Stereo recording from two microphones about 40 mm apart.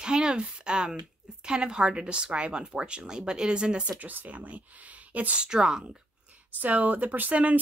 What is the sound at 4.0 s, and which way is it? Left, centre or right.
Speech, right.